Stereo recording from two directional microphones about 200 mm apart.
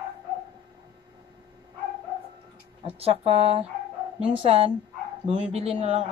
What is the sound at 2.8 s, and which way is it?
Speech, 30° right (ahead or behind).